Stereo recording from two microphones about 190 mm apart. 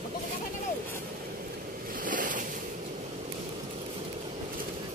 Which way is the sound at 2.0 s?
45° right (ahead or behind).